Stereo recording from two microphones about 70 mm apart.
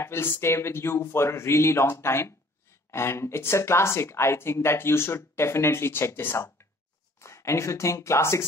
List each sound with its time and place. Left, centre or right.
0.0 s speech: left